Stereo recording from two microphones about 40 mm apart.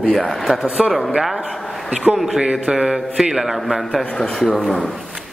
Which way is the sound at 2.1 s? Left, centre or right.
Centre.